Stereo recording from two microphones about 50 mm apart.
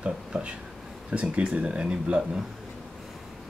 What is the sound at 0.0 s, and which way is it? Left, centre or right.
Speech, right.